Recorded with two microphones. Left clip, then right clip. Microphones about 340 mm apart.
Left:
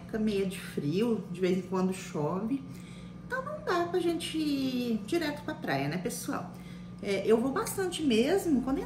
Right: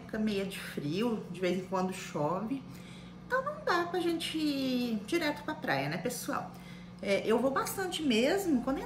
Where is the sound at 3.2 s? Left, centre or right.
Centre.